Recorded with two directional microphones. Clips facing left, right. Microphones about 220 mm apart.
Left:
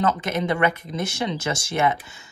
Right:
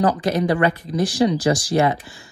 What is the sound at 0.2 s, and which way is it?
Speech, 20° left (ahead or behind).